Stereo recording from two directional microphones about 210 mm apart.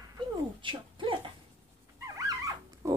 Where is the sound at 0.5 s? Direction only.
25° right (ahead or behind).